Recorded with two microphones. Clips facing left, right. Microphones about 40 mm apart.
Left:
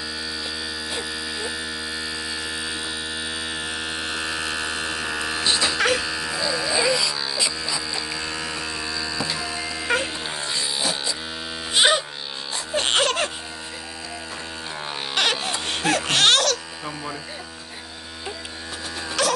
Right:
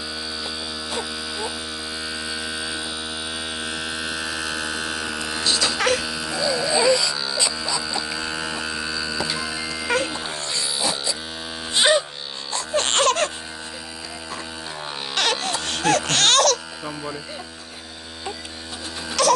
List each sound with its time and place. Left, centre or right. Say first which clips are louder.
0.8 s hum: even; centre
3.5 s mains hum: even; centre
5.4 s electric shaver: even; left
5.8 s a sound: even; centre
11.7 s music: right 1 dB; centre
15.1 s music: even; centre
19.2 s music: right 4 dB; centre